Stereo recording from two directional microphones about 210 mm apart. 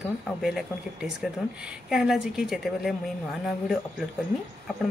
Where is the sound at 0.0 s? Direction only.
Centre (ahead or behind).